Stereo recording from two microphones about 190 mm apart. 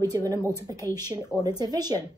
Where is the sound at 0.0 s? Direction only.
20° right (ahead or behind).